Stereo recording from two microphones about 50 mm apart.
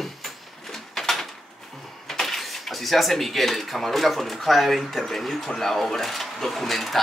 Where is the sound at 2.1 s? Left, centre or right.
Centre.